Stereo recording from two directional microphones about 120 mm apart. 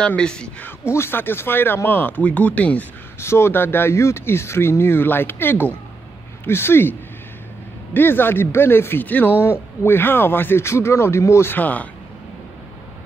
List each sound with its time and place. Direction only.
0.0 s a man's voice: 10° left (ahead or behind)